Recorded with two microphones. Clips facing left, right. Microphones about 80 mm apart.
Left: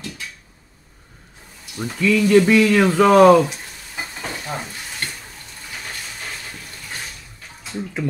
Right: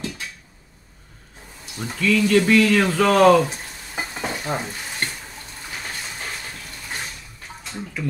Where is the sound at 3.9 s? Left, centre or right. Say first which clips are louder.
Right 2 dB; centre.